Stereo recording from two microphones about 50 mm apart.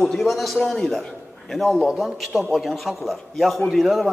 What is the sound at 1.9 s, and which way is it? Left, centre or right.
A man's voice, centre.